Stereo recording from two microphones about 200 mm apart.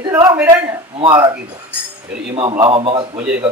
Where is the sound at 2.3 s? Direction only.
25° right (ahead or behind).